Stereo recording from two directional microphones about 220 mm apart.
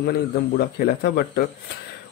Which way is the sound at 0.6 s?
45° left (ahead or behind).